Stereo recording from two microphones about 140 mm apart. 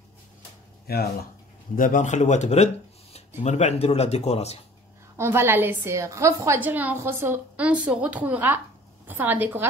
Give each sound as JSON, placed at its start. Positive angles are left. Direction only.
{"t": 0.9, "sound": "speech", "side_deg": 90}
{"t": 1.8, "sound": "speech", "side_deg": 70}
{"t": 5.1, "sound": "a woman's voice", "side_deg": -15}